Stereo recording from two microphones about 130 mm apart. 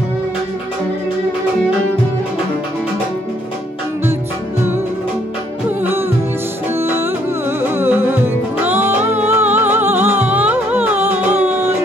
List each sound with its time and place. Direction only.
5.8 s music: 15° right (ahead or behind)